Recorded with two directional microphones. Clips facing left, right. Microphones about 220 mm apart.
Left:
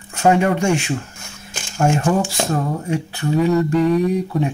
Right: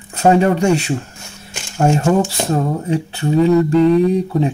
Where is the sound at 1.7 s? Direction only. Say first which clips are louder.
Right 3 dB; 25° right (ahead or behind).